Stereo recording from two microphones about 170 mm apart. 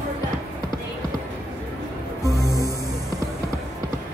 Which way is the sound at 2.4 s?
20° right (ahead or behind).